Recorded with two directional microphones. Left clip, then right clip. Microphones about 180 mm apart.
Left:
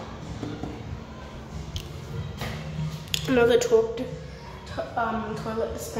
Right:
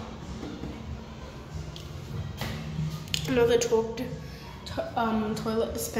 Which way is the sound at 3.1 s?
5° left (ahead or behind).